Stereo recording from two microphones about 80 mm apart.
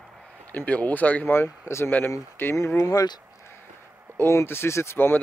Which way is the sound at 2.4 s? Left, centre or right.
Left.